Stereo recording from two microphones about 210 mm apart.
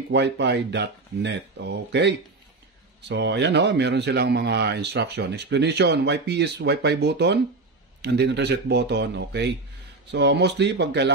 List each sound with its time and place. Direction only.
0.1 s speech: 55° right (ahead or behind)